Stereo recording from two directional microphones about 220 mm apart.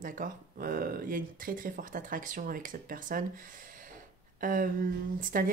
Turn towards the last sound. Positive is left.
turn(degrees=-40)  # may be behind; listen again after turning